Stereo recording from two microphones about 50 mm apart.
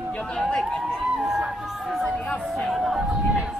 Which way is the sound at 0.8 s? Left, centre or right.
Centre.